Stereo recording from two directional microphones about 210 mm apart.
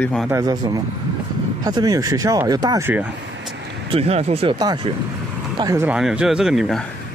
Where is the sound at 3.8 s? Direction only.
30° right (ahead or behind); by 6.0 s 15° right (ahead or behind).